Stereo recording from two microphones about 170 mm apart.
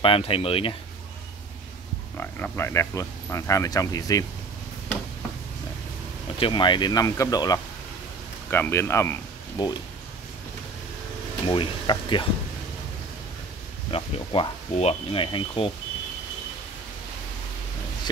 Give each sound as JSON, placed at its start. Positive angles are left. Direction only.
{"t": 0.0, "sound": "speech", "side_deg": 35}
{"t": 2.1, "sound": "speech", "side_deg": 15}
{"t": 6.4, "sound": "speech", "side_deg": 30}
{"t": 11.4, "sound": "speech", "side_deg": 30}
{"t": 13.8, "sound": "speech", "side_deg": 30}